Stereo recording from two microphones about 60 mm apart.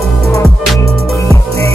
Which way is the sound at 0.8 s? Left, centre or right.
Left.